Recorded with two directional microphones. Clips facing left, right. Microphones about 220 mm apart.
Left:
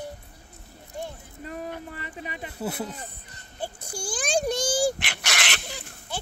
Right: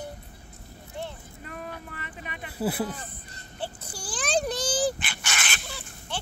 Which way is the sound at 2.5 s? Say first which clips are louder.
Right 4 dB; 5° right (ahead or behind).